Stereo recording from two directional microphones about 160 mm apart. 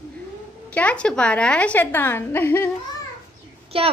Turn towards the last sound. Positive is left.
turn(degrees=-35)  # may be behind; listen again after turning